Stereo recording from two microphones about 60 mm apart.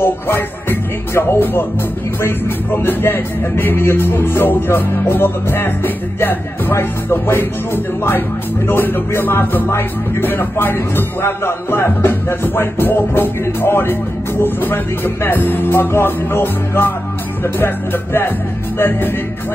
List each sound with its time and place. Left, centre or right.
0.0 s music: left
2.2 s speech: left